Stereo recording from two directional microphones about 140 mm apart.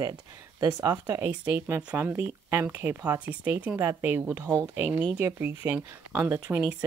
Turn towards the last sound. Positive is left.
turn(degrees=-15)  # may be behind; listen again after turning